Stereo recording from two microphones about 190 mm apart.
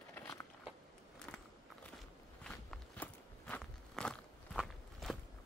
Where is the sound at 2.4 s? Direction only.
5° left (ahead or behind).